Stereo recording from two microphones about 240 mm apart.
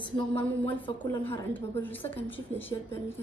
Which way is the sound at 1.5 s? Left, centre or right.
Centre.